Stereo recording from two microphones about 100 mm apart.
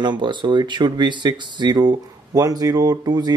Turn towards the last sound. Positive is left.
turn(degrees=-45)  # may be behind; listen again after turning